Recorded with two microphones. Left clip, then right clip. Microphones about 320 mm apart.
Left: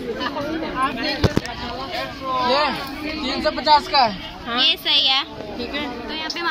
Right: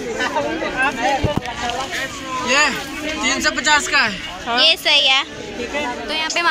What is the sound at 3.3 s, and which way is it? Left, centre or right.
Speech, centre.